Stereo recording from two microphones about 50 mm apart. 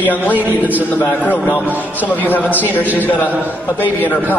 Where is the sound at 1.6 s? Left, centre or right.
Right.